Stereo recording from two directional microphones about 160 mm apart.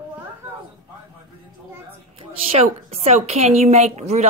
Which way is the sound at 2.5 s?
40° right (ahead or behind).